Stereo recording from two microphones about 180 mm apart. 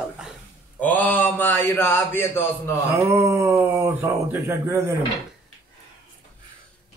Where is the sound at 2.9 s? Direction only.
15° right (ahead or behind).